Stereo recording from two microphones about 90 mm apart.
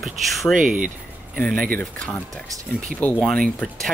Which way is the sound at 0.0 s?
Centre (ahead or behind).